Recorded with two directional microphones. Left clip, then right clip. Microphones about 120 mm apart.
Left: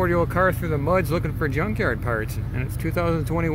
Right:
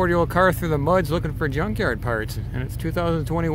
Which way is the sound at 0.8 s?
15° right (ahead or behind).